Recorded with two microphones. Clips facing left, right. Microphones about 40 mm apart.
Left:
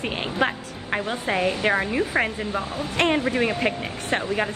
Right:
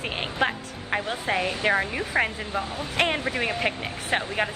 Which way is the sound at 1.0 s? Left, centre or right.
Left.